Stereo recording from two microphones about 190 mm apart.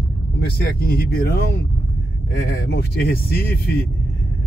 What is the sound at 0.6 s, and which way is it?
Speech, 55° left (ahead or behind).